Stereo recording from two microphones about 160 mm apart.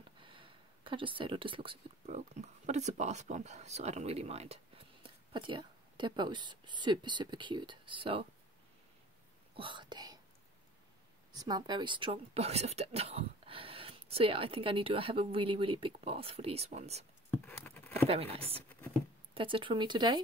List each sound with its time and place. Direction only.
0.2 s a sound: 30° right (ahead or behind)
2.1 s speech: 45° right (ahead or behind)
9.6 s speech: 30° right (ahead or behind)
11.3 s speech: 25° right (ahead or behind); by 17.0 s 40° right (ahead or behind)
17.5 s patter: 10° left (ahead or behind)
18.0 s speech: 35° right (ahead or behind)